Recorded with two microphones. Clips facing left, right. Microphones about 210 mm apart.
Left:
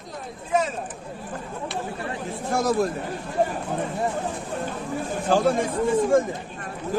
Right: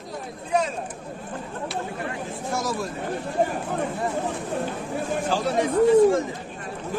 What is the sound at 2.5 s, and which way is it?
Speech, 55° left (ahead or behind).